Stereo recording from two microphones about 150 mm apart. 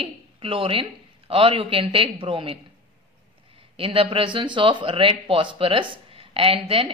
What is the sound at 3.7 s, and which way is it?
Speech, 35° right (ahead or behind).